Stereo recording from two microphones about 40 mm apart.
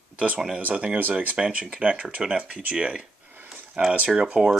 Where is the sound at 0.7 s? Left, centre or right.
Right.